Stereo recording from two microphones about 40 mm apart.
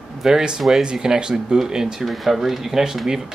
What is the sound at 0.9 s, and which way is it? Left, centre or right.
Speech, centre.